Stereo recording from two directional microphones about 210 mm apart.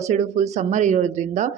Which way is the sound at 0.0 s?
35° right (ahead or behind).